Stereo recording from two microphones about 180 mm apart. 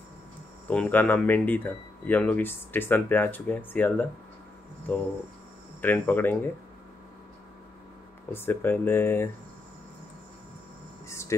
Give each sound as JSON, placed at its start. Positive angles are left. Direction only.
{"t": 0.7, "sound": "speech", "side_deg": 10}
{"t": 5.8, "sound": "speech", "side_deg": 10}
{"t": 8.3, "sound": "speech", "side_deg": 10}
{"t": 11.1, "sound": "speech", "side_deg": 15}